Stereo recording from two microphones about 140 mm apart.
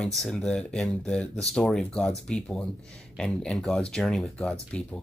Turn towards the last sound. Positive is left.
turn(degrees=10)  # may be behind; listen again after turning